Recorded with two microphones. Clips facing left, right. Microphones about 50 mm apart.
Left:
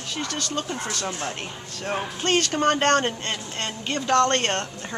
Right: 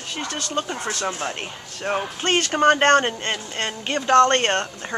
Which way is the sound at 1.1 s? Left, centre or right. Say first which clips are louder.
Right 3 dB; right.